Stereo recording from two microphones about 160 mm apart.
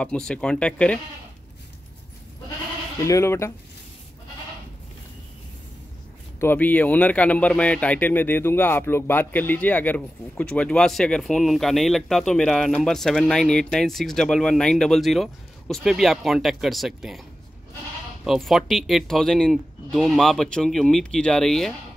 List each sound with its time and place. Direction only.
0.0 s speech: 5° left (ahead or behind)
3.0 s speech: 20° left (ahead or behind)
6.4 s speech: 10° left (ahead or behind)
18.2 s speech: centre (ahead or behind)